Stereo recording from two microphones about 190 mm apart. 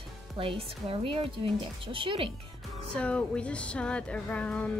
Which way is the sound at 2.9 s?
5° left (ahead or behind).